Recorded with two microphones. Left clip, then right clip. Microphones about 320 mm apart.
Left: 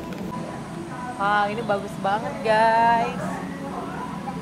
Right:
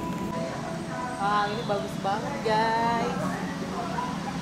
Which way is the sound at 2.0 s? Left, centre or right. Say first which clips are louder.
Left 6 dB; left.